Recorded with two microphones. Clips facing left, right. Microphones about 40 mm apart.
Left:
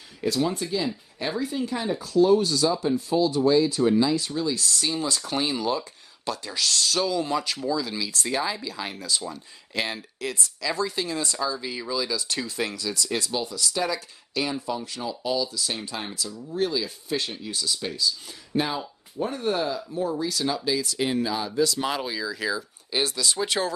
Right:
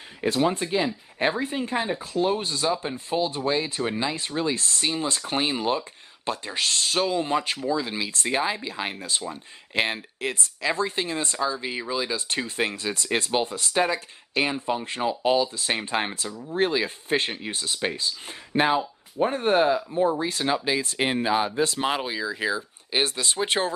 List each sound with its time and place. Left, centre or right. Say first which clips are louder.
0.2 s speech: right 2 dB; right